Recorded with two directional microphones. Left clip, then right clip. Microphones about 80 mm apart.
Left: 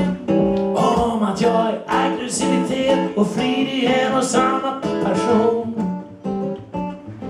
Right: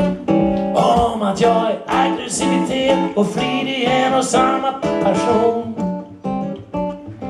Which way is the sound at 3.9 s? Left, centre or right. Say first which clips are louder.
Right 4 dB; right.